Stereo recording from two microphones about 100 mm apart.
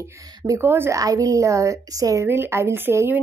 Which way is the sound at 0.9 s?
35° right (ahead or behind).